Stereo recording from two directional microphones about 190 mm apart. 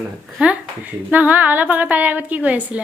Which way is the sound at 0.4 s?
5° right (ahead or behind).